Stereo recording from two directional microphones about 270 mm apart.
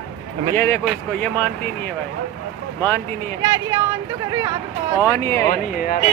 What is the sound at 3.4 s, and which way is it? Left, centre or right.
Speech, centre.